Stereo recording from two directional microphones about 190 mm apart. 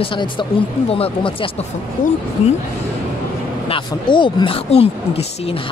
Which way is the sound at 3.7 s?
25° left (ahead or behind).